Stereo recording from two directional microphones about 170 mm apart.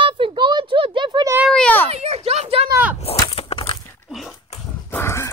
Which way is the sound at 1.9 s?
40° right (ahead or behind).